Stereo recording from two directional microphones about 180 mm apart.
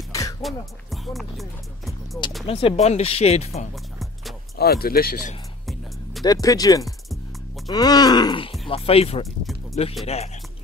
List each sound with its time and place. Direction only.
0.1 s music: 20° left (ahead or behind)
1.0 s speech: centre (ahead or behind)
2.4 s speech: 35° left (ahead or behind)
4.0 s music: centre (ahead or behind)
4.6 s speech: 60° left (ahead or behind)
6.2 s speech: 20° left (ahead or behind); by 10.3 s 35° left (ahead or behind)